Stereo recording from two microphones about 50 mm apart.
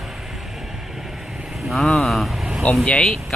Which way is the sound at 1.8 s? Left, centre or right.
Centre.